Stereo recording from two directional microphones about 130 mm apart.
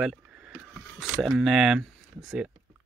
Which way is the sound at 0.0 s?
5° right (ahead or behind).